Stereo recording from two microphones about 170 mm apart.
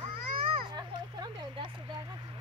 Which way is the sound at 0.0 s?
55° right (ahead or behind).